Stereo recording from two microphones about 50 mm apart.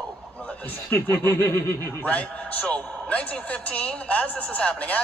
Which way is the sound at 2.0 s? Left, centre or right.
Left.